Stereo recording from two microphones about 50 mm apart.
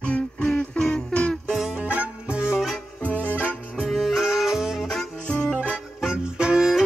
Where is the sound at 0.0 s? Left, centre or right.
Left.